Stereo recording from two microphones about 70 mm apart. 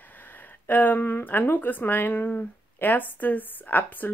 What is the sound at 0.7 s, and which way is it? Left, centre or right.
Speech, left.